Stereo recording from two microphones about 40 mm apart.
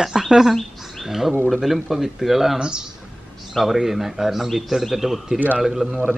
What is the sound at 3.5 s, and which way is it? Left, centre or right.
Speech, centre.